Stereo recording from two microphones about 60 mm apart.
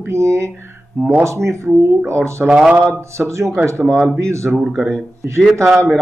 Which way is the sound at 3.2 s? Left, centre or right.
Right.